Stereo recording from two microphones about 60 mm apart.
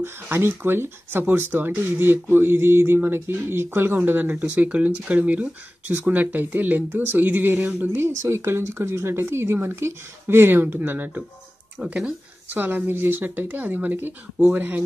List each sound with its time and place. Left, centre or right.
0.0 s speech: right
8.0 s speech: right